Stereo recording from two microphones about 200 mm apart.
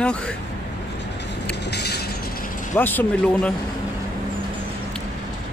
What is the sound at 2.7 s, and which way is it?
Speech, 10° left (ahead or behind).